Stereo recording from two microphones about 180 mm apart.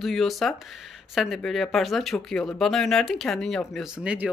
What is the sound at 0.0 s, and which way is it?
Speech, centre (ahead or behind).